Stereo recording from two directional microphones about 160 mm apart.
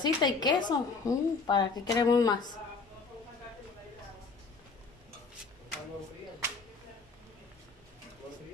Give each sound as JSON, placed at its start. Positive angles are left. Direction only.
{"t": 0.0, "sound": "a woman's voice", "side_deg": 25}